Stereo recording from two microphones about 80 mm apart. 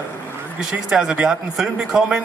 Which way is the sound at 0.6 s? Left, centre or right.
Centre.